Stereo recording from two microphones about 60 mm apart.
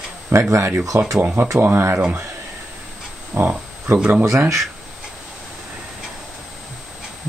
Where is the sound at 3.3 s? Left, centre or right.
Right.